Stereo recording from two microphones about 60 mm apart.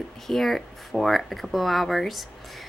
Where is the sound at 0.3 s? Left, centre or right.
Centre.